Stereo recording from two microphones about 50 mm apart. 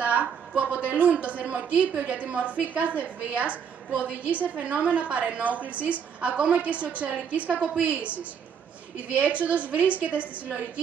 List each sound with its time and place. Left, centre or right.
0.0 s a woman's voice: right